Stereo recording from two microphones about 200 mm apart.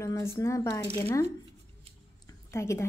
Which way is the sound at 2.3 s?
15° left (ahead or behind).